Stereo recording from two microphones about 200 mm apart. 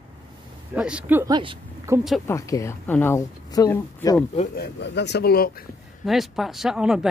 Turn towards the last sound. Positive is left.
turn(degrees=-5)  # may be behind; listen again after turning